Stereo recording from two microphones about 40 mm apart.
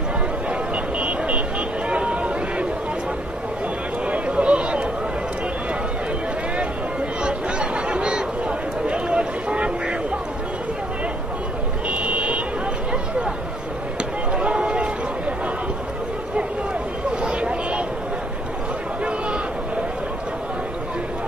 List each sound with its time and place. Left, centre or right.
0.9 s vehicle: right
1.9 s a sound: right
4.0 s a sound: right
7.2 s chatter: right
11.9 s vehicle: right
14.3 s run: right
17.2 s vehicle: right